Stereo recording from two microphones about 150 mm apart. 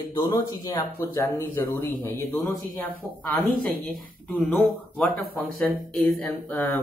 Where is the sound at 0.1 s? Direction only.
30° left (ahead or behind).